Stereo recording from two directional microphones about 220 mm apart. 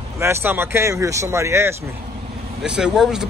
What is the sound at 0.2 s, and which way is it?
Speech, 10° right (ahead or behind).